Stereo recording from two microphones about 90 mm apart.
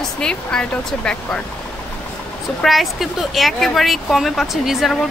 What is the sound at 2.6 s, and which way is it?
Speech, centre (ahead or behind).